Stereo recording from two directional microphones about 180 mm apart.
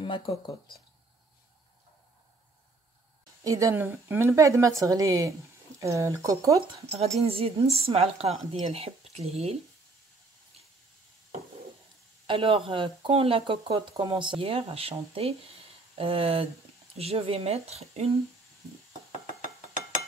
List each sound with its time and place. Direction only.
3.4 s a woman's voice: 15° right (ahead or behind)
6.9 s speech: 35° right (ahead or behind)
12.3 s speech: 30° right (ahead or behind)